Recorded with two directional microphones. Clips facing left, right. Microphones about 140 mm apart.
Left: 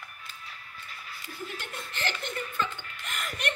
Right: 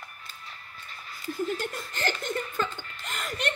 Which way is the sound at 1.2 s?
40° right (ahead or behind).